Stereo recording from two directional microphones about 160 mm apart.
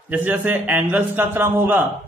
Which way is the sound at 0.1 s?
10° right (ahead or behind).